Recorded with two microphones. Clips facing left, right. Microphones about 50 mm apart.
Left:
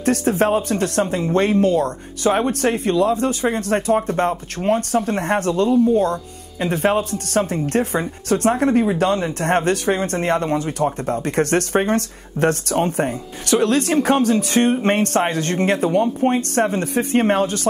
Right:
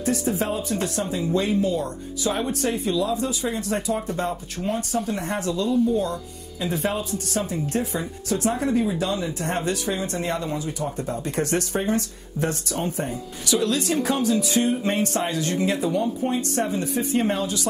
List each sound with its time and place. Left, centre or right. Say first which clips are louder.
0.0 s speech: left 7 dB; left